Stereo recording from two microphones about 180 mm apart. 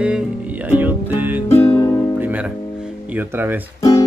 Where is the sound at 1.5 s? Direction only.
15° left (ahead or behind).